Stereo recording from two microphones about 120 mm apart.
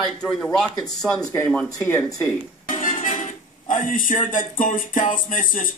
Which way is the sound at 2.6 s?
90° left.